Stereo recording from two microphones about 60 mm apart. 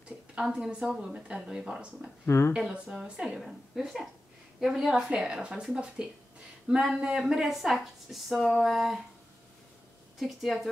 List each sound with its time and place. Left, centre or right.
0.4 s a woman's voice: centre
2.2 s speech: left
2.5 s a woman's voice: centre
4.9 s a woman's voice: centre
10.1 s speech: centre